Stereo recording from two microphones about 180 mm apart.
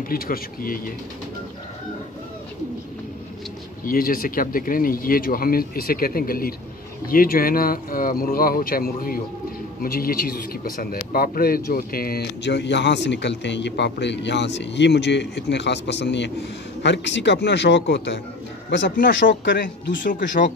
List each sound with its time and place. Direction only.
0.1 s speech: 55° left (ahead or behind)
3.8 s speech: 50° left (ahead or behind); by 18.2 s 75° left (ahead or behind)
18.9 s speech: 50° left (ahead or behind)
19.1 s speech: 85° left
20.1 s speech: 45° left (ahead or behind)